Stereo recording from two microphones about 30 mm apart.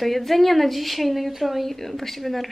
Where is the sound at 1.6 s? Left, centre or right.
Centre.